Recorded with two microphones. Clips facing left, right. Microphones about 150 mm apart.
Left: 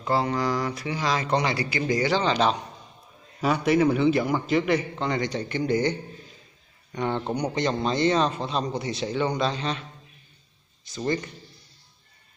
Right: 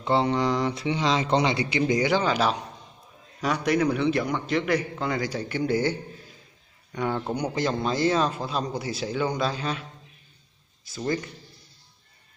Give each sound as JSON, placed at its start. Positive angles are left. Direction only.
{"t": 0.3, "sound": "a man's voice", "side_deg": -25}
{"t": 7.0, "sound": "a man's voice", "side_deg": -5}
{"t": 10.9, "sound": "a man's voice", "side_deg": 0}